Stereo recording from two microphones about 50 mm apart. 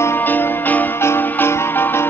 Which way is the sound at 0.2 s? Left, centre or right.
Left.